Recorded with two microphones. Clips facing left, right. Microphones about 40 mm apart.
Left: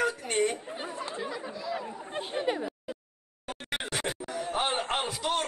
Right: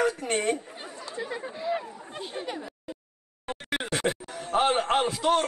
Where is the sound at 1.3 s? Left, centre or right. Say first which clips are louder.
Right 4 dB; right.